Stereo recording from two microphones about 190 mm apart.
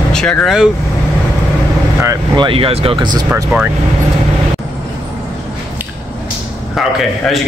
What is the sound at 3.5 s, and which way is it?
Speech, 10° right (ahead or behind).